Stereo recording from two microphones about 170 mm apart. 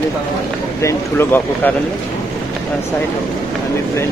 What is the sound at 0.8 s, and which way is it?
Speech, 15° left (ahead or behind).